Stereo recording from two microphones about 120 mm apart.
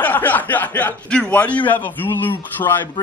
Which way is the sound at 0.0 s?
15° left (ahead or behind).